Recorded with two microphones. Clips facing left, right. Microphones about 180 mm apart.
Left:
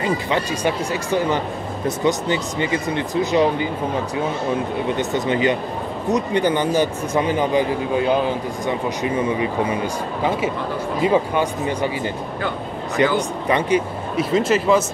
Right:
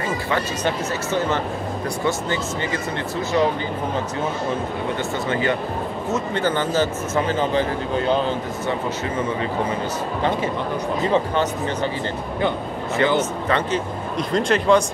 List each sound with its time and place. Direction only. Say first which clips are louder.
0.0 s speech: left 2 dB; 15° left (ahead or behind)
4.9 s speech: left 4 dB; 20° left (ahead or behind)
11.0 s speech: left 3 dB; 10° left (ahead or behind)
13.0 s speech: left 1 dB; 15° left (ahead or behind)